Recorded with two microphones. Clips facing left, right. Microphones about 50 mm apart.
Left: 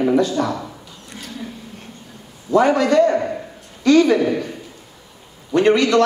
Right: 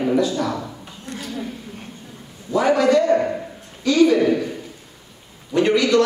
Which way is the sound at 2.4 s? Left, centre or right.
Left.